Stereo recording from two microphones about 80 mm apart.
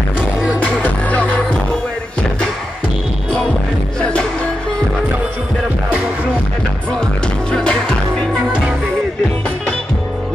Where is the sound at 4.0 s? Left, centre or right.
Centre.